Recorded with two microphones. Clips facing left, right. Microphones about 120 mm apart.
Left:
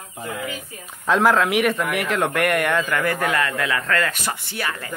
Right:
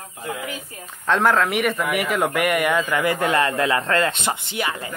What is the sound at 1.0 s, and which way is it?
A man's voice, centre (ahead or behind).